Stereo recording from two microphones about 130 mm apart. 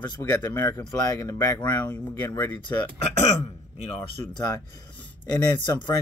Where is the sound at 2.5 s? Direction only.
35° left (ahead or behind).